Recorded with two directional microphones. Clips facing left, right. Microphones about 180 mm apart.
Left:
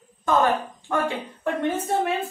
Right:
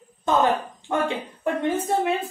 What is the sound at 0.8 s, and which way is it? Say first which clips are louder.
Speech: right 1 dB; 20° right (ahead or behind).